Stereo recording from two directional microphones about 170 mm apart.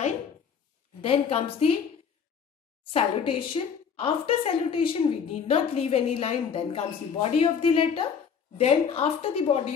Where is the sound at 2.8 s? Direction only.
35° left (ahead or behind).